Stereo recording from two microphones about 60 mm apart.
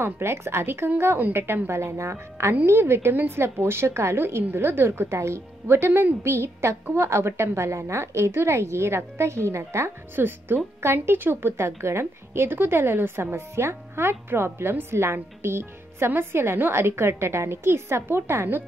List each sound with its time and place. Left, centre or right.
0.0 s a woman's voice: right
1.7 s a woman's voice: right